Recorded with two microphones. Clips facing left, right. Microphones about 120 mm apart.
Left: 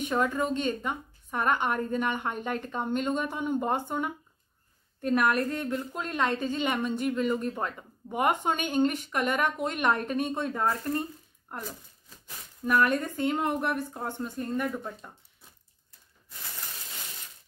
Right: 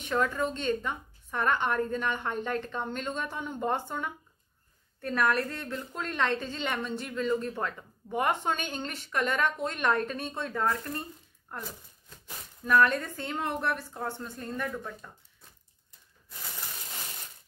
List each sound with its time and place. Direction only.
0.0 s a woman's voice: 10° left (ahead or behind)
12.6 s a woman's voice: 15° left (ahead or behind)